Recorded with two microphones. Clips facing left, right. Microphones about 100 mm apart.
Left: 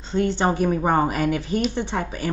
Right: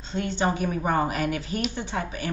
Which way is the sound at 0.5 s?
35° left (ahead or behind).